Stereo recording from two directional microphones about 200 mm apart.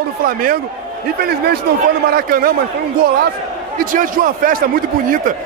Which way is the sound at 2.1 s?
45° right (ahead or behind).